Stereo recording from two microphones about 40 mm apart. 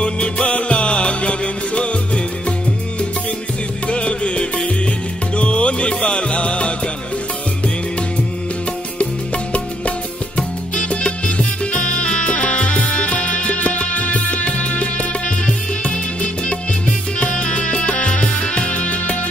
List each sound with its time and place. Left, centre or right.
0.0 s music: left
3.8 s music: left
8.9 s music: left